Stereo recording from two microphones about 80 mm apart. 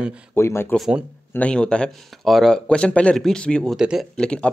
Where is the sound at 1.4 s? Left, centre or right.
Centre.